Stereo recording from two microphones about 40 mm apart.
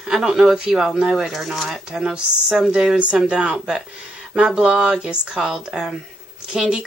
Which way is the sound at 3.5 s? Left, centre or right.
Centre.